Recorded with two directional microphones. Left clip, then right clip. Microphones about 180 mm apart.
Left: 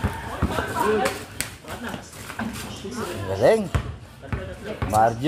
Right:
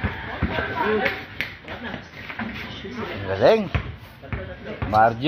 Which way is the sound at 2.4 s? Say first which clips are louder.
Left 1 dB; 5° left (ahead or behind).